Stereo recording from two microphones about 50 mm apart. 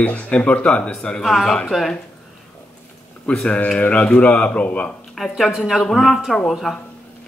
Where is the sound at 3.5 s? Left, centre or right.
Left.